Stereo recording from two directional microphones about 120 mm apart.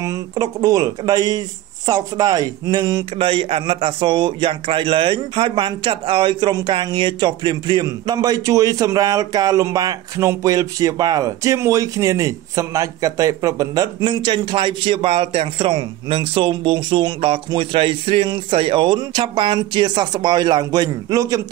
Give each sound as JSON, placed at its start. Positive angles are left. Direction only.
{"t": 0.0, "sound": "a man's voice", "side_deg": -30}
{"t": 3.2, "sound": "a man's voice", "side_deg": -45}
{"t": 14.0, "sound": "a man's voice", "side_deg": -40}